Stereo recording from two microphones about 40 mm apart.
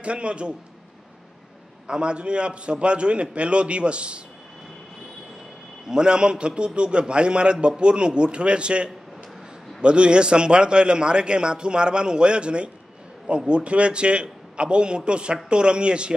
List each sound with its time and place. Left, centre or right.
0.0 s a man's voice: right
1.9 s a man's voice: right
5.9 s a man's voice: right